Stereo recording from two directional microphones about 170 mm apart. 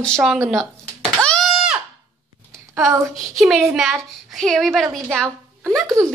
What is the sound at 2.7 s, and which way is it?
Speech, 15° right (ahead or behind).